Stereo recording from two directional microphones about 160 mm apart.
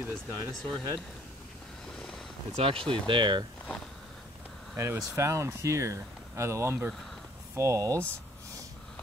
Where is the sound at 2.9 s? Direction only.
30° right (ahead or behind).